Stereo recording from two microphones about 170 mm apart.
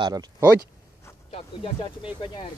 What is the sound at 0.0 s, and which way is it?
Speech, 25° right (ahead or behind).